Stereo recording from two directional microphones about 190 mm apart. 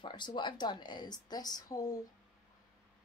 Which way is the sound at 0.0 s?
25° left (ahead or behind).